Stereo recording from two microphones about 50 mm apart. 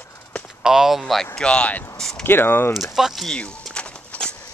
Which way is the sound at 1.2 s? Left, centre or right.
Centre.